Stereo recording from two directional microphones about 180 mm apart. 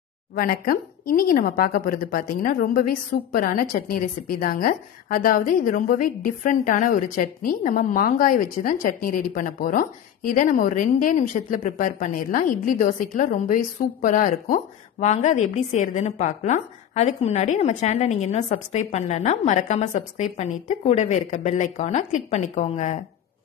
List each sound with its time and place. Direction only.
0.4 s a woman's voice: 55° left (ahead or behind)